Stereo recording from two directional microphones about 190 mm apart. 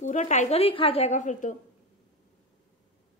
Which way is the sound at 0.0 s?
40° left (ahead or behind).